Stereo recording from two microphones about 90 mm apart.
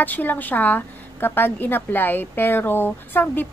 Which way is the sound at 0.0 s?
20° left (ahead or behind).